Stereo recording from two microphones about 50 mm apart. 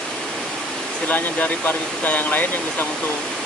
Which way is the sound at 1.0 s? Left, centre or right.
Left.